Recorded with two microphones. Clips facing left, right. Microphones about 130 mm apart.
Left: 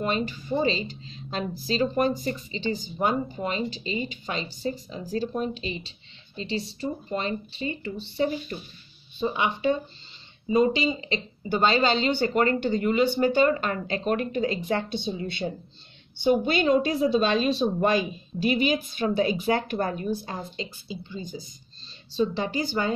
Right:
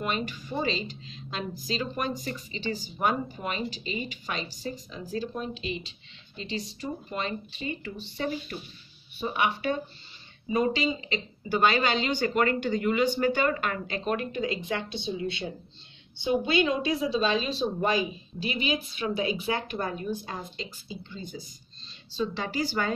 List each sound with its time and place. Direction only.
0.0 s a woman's voice: 30° left (ahead or behind)
9.2 s a woman's voice: 25° left (ahead or behind); by 18.5 s 55° left (ahead or behind)
19.0 s speech: 40° left (ahead or behind)
21.3 s a woman's voice: 15° left (ahead or behind)